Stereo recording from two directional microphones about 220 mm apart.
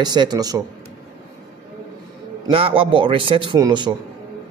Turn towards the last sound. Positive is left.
turn(degrees=-20)  # may be behind; listen again after turning